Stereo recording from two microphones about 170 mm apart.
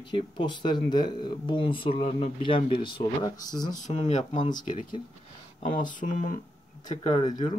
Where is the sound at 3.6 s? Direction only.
45° left (ahead or behind).